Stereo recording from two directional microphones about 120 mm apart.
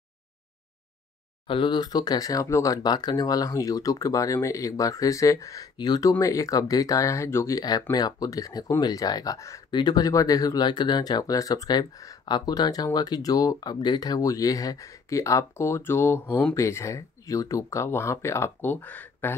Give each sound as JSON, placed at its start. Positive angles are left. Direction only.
{"t": 1.5, "sound": "speech", "side_deg": 40}
{"t": 9.7, "sound": "speech", "side_deg": 35}